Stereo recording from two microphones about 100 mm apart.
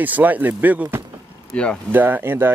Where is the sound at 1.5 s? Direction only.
10° left (ahead or behind).